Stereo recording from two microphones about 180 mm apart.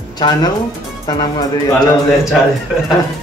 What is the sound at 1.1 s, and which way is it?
Speech, 20° left (ahead or behind).